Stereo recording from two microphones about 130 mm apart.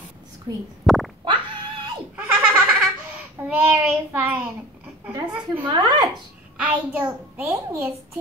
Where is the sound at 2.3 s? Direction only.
10° right (ahead or behind).